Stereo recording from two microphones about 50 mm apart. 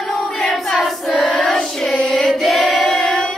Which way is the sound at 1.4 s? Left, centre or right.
Centre.